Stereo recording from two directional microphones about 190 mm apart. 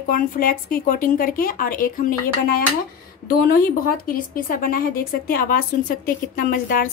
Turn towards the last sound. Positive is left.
turn(degrees=45)  # may be behind; listen again after turning